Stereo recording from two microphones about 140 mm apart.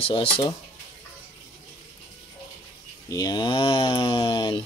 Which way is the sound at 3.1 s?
25° left (ahead or behind).